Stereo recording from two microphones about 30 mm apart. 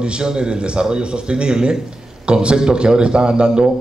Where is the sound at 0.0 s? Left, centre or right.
Right.